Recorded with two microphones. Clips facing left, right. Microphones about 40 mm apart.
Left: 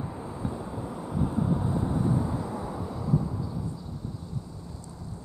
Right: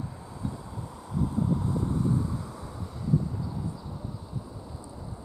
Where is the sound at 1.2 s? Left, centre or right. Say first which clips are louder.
Even; left.